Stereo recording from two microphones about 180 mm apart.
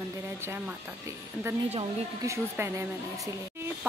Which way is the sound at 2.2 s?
15° right (ahead or behind).